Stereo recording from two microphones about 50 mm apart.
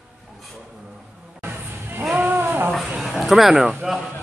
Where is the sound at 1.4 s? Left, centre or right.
Right.